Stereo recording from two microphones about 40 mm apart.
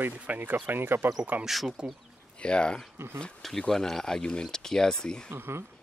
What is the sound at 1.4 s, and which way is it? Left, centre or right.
Speech, centre.